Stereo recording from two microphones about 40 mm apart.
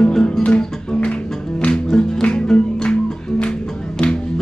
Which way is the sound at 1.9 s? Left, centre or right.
Centre.